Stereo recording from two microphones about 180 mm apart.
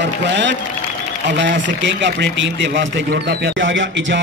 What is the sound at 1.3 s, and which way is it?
A man's voice, 90° right.